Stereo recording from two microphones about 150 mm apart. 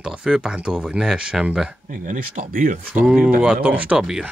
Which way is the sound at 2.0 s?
60° right (ahead or behind).